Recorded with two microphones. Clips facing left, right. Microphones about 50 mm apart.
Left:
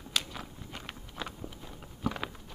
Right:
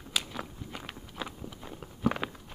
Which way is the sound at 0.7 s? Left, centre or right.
Centre.